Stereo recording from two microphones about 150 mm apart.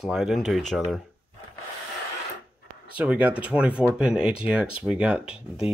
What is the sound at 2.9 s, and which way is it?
Speech, 10° right (ahead or behind).